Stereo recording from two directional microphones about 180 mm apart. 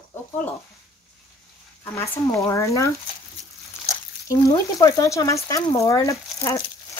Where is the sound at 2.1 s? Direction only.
15° left (ahead or behind).